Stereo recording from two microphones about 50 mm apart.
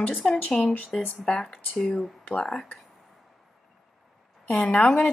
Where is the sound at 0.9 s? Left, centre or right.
Centre.